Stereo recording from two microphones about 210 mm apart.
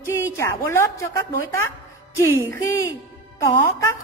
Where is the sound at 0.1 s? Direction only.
15° left (ahead or behind).